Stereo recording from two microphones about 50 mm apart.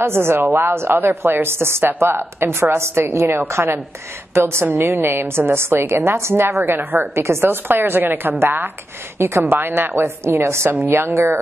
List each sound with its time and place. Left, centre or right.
0.0 s a woman's voice: right
6.6 s a woman's voice: right
7.2 s a woman's voice: right
7.6 s a woman's voice: right
9.2 s a woman's voice: right
9.5 s a woman's voice: right